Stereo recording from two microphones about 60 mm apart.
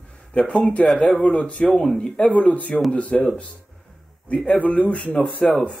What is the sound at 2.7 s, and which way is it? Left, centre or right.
Speech, centre.